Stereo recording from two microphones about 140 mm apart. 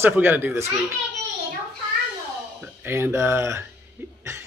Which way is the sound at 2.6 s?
15° right (ahead or behind).